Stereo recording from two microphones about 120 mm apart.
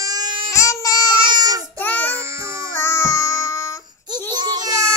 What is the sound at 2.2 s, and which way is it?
Babbling, 25° right (ahead or behind).